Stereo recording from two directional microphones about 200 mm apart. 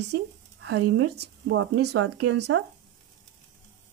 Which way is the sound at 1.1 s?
65° right (ahead or behind).